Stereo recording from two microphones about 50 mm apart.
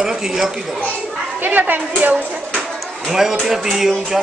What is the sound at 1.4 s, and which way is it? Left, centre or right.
Speech, right.